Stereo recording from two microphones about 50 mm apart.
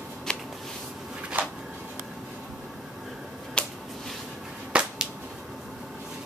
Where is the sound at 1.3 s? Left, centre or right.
Right.